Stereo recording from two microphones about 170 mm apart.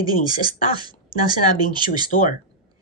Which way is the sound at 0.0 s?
25° right (ahead or behind).